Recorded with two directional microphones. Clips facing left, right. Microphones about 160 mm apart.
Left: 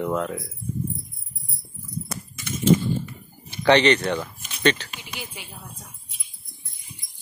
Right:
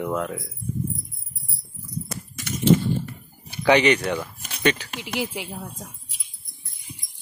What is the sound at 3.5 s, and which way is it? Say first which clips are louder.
Speech: left 1 dB; 10° right (ahead or behind).